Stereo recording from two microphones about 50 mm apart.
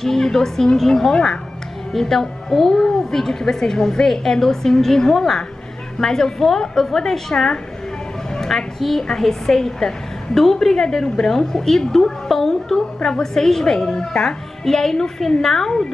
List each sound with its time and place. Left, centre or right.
0.0 s a woman's voice: centre